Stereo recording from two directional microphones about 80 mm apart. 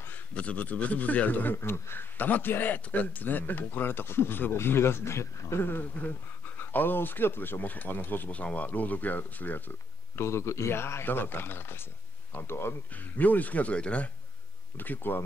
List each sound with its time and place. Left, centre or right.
0.1 s a man's voice: centre
10.1 s a man's voice: left